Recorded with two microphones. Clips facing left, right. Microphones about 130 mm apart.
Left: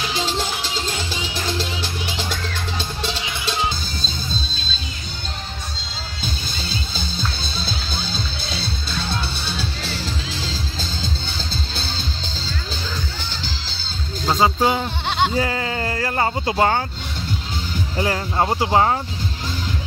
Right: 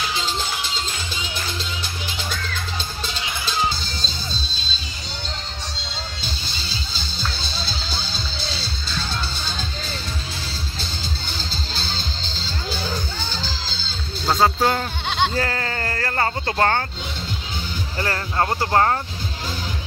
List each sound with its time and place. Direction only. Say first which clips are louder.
0.1 s music: left 3 dB; 90° left
6.2 s music: left 4 dB; 50° left (ahead or behind)
9.6 s music: left 3 dB; 90° left
13.4 s music: right 1 dB; 65° left (ahead or behind)
14.2 s speech: left 1 dB; 10° left (ahead or behind)
17.9 s speech: left 2 dB; 15° left (ahead or behind)